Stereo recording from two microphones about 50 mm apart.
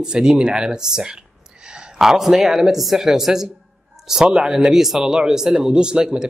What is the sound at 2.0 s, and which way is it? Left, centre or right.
Speech, centre.